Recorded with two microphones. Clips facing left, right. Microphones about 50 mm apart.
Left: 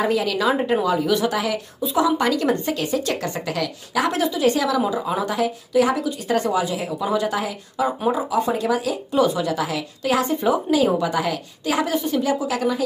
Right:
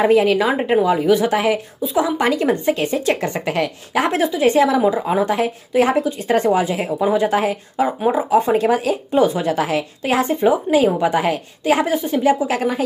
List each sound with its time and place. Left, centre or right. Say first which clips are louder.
0.0 s a woman's voice: right 6 dB; right
2.7 s a woman's voice: right 4 dB; right